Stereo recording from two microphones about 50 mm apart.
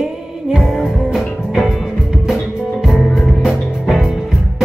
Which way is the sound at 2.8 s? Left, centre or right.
Centre.